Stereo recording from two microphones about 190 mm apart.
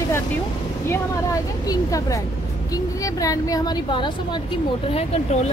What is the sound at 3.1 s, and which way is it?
Speech, 20° left (ahead or behind).